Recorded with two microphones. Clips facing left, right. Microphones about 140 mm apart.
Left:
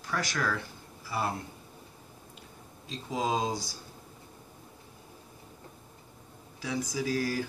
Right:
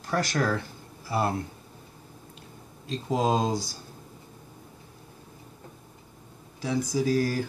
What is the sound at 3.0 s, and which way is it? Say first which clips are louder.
Speech: right 5 dB; 50° right (ahead or behind).